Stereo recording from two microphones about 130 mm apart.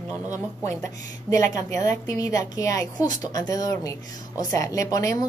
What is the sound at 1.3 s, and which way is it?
A woman's voice, 25° left (ahead or behind).